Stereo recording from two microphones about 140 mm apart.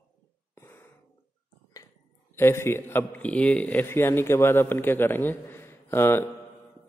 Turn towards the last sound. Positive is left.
turn(degrees=15)  # may be behind; listen again after turning